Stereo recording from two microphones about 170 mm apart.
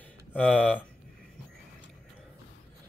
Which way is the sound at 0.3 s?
10° left (ahead or behind).